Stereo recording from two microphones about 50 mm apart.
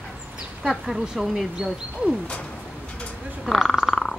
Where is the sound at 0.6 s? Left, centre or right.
Centre.